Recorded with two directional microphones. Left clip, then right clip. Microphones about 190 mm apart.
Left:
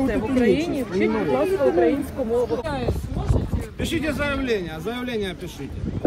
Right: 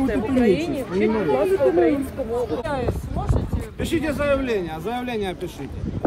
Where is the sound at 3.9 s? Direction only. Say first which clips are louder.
Right 4 dB; 60° right (ahead or behind).